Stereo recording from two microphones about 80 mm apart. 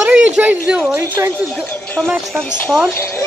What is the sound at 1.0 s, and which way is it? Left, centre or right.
Speech, right.